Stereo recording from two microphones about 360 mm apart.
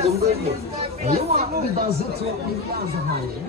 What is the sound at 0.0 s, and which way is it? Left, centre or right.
Speech, right.